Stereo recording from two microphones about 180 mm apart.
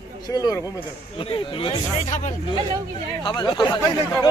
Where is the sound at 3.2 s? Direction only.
25° left (ahead or behind).